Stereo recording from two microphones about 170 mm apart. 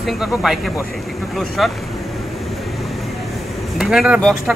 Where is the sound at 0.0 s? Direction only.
Centre (ahead or behind).